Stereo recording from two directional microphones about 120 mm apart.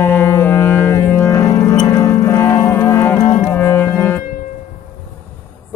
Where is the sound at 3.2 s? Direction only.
60° left (ahead or behind).